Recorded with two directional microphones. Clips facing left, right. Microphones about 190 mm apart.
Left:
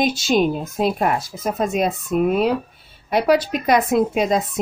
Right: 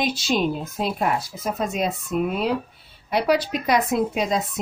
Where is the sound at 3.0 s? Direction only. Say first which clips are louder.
Left 4 dB; 50° left (ahead or behind).